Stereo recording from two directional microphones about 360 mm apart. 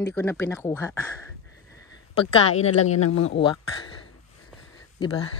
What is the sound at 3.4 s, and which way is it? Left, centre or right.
Speech, centre.